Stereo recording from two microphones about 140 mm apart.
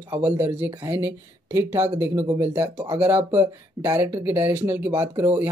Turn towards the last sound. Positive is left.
turn(degrees=-15)  # may be behind; listen again after turning